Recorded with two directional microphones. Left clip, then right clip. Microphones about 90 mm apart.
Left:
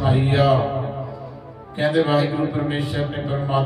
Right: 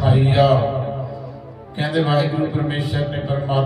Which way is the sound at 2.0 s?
25° right (ahead or behind).